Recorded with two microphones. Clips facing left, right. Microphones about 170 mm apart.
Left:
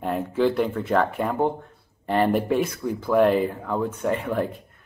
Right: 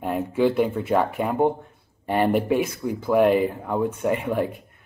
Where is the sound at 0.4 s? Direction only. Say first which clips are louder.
Right 1 dB; 10° right (ahead or behind).